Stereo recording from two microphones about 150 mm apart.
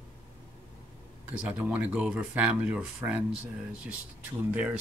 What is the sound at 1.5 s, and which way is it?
Speech, 10° right (ahead or behind).